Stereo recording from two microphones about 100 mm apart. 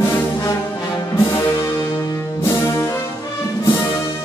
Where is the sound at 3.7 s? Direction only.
35° left (ahead or behind).